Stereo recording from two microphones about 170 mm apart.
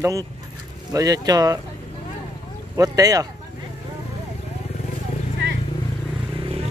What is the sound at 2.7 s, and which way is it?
Speech, 20° right (ahead or behind).